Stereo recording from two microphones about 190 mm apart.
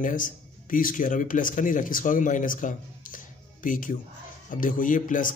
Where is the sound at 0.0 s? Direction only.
45° left (ahead or behind).